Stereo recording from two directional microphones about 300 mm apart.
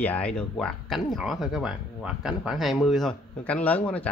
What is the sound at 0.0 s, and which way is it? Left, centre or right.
Speech, centre.